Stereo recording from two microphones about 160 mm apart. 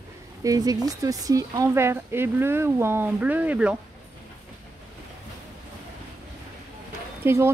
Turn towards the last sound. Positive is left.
turn(degrees=-15)  # may be behind; listen again after turning